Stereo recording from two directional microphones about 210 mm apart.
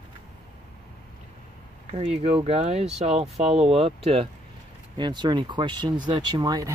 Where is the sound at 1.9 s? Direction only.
30° right (ahead or behind).